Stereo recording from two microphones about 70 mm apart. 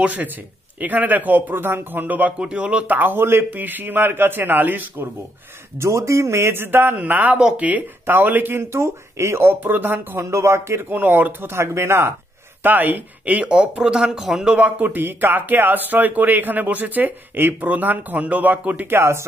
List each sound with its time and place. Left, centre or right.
0.0 s speech: right
5.8 s speech: right
10.3 s speech: right
10.9 s speech: right
12.6 s speech: right; by 14.7 s centre
14.8 s speech: right